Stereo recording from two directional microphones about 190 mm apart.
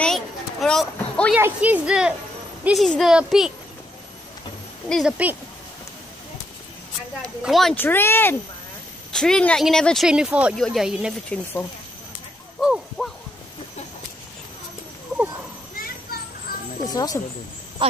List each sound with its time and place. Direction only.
0.0 s a sound: 5° left (ahead or behind)
1.3 s speech: 10° right (ahead or behind)
4.8 s speech: centre (ahead or behind)
7.2 s a child's voice: centre (ahead or behind)
12.5 s a sound: centre (ahead or behind)
16.8 s speech: 20° left (ahead or behind)